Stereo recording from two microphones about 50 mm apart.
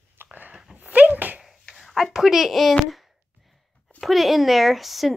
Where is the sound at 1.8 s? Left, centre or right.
Centre.